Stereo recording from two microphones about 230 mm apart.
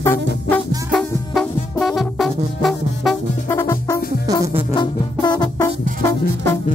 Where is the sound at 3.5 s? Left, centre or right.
Centre.